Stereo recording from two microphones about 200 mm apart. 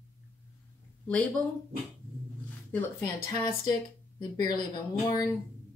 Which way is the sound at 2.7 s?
10° left (ahead or behind).